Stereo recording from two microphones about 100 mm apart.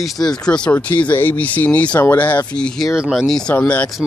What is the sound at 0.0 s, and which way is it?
Speech, centre (ahead or behind).